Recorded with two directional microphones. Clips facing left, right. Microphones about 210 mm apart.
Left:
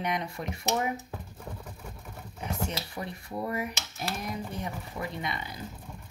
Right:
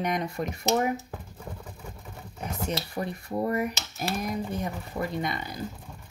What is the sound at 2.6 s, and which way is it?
Speech, 40° right (ahead or behind).